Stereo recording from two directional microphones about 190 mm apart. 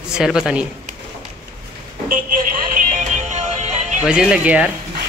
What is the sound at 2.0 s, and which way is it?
Music, 45° right (ahead or behind).